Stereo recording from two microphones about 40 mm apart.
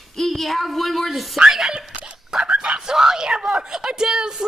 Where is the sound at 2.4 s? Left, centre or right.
Right.